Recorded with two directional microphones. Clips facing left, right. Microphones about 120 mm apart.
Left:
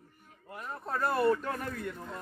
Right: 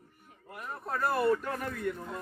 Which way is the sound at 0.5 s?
5° right (ahead or behind).